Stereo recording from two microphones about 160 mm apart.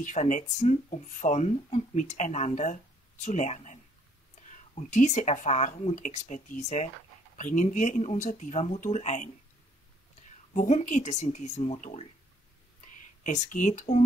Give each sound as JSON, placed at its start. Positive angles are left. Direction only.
{"t": 0.0, "sound": "speech", "side_deg": 50}
{"t": 10.5, "sound": "speech", "side_deg": 50}
{"t": 13.2, "sound": "speech", "side_deg": 50}